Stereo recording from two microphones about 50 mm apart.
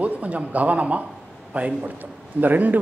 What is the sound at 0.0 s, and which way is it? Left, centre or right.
A man's voice, right.